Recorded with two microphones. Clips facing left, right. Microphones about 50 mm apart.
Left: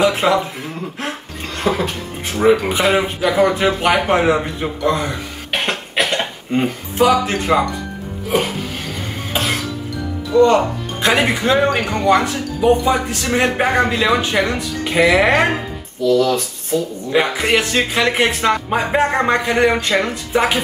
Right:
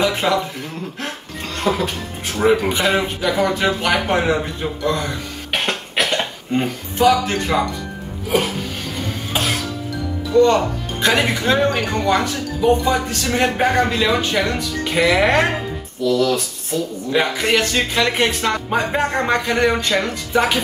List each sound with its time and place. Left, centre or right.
0.0 s a man's voice: centre
1.6 s a man's voice: centre
5.5 s cough: centre
8.3 s music: centre
10.4 s speech: centre
11.4 s a man's voice: centre